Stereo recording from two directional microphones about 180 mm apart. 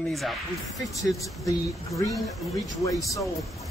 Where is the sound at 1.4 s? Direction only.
20° left (ahead or behind).